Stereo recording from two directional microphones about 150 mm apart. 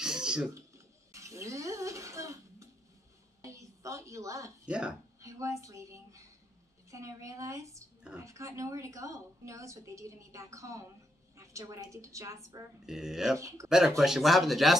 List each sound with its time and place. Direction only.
0.0 s a sound: 5° right (ahead or behind)
0.6 s cutlery: 20° right (ahead or behind)
3.4 s a sound: 20° right (ahead or behind)
4.6 s speech: 5° right (ahead or behind)
5.2 s a woman's voice: 20° right (ahead or behind)
12.8 s speech: 5° right (ahead or behind)
13.4 s a woman's voice: 20° right (ahead or behind)
13.7 s speech: centre (ahead or behind)